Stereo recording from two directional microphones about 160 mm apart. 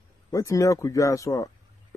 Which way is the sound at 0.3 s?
20° left (ahead or behind).